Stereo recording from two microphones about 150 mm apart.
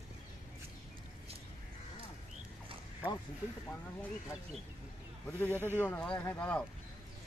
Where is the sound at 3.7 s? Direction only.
10° left (ahead or behind).